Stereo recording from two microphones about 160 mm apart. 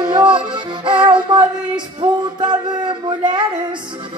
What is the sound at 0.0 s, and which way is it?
Music, 30° right (ahead or behind).